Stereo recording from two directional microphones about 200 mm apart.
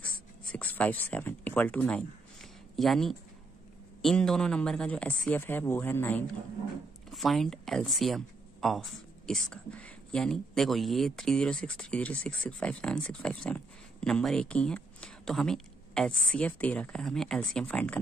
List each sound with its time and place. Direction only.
0.0 s speech: 5° left (ahead or behind)